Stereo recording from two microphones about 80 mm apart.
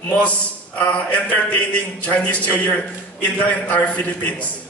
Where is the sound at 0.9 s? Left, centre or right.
Centre.